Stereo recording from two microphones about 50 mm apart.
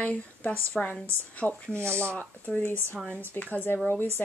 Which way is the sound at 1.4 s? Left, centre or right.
Centre.